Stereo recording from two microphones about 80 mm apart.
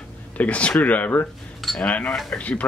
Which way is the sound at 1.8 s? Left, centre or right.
Centre.